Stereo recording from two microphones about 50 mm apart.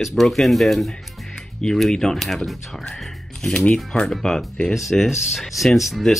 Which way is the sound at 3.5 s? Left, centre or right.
Left.